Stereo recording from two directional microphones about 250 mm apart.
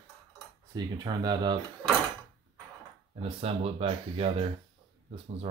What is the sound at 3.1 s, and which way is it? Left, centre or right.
Speech, right.